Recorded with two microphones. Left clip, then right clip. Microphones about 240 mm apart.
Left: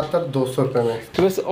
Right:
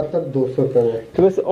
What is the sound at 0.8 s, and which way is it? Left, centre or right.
Speech, left.